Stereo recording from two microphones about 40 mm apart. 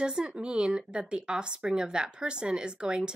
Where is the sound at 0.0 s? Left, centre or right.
Right.